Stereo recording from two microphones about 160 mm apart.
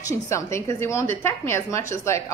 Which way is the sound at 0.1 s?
20° left (ahead or behind).